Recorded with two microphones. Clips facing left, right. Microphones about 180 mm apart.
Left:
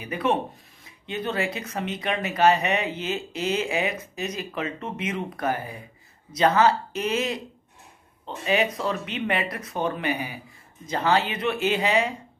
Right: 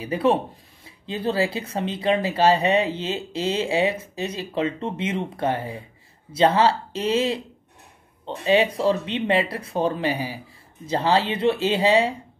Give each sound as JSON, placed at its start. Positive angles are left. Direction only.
{"t": 0.0, "sound": "speech", "side_deg": -30}